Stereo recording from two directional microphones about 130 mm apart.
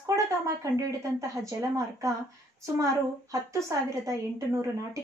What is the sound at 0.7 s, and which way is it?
Speech, 25° right (ahead or behind).